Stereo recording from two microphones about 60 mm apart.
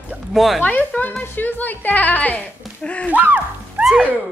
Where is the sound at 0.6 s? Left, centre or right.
Left.